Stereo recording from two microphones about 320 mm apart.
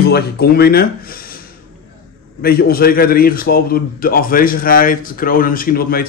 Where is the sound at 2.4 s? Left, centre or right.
Left.